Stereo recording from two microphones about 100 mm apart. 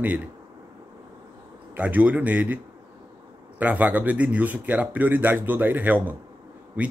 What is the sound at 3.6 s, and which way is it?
Speech, 15° right (ahead or behind).